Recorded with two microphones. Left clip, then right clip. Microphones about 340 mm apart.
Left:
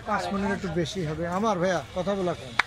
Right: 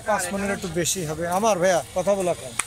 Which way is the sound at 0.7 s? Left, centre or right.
Right.